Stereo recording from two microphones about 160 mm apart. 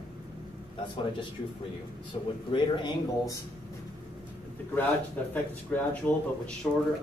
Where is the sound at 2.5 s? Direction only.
30° left (ahead or behind).